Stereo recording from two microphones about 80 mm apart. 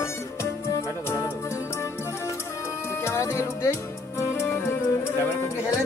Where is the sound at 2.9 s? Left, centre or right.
Left.